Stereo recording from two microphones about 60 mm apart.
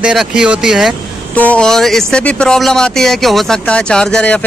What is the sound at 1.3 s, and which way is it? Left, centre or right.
Speech, left.